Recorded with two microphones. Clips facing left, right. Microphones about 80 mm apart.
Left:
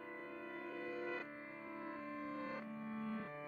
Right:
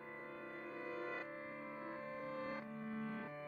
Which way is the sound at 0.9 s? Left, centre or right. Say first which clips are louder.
Even; right.